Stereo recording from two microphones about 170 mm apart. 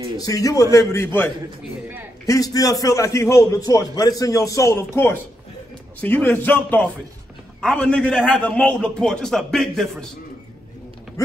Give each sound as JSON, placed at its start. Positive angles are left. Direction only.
{"t": 0.2, "sound": "a man's voice", "side_deg": 20}